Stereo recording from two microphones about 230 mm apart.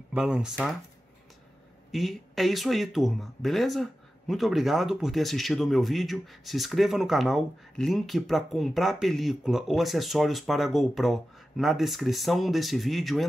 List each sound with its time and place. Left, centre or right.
0.1 s speech: centre
1.9 s speech: centre